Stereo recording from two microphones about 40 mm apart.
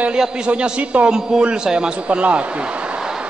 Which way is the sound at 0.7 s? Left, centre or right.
Right.